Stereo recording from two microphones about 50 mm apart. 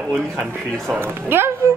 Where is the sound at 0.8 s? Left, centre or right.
Right.